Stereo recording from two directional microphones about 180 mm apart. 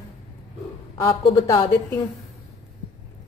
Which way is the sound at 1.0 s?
30° left (ahead or behind).